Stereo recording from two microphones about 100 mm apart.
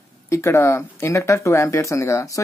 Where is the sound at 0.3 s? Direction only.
30° left (ahead or behind).